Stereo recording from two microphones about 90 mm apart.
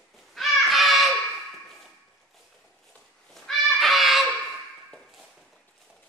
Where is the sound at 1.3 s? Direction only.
Centre (ahead or behind).